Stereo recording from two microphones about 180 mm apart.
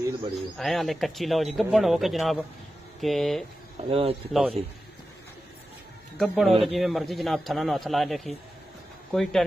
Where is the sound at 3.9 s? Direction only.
30° right (ahead or behind).